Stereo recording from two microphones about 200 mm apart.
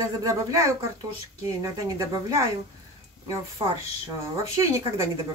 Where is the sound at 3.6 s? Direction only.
20° right (ahead or behind).